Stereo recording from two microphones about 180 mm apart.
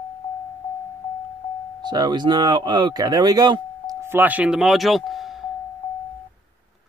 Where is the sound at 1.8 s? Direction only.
25° right (ahead or behind).